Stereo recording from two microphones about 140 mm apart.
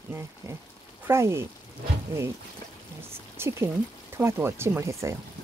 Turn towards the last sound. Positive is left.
turn(degrees=-20)  # may be behind; listen again after turning